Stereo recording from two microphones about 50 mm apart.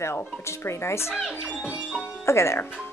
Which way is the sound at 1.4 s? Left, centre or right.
Centre.